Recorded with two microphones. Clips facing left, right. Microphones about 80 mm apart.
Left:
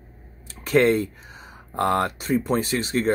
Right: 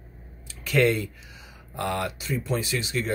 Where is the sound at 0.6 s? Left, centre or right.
Left.